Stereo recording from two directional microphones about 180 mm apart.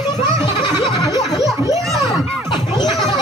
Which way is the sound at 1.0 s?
20° left (ahead or behind).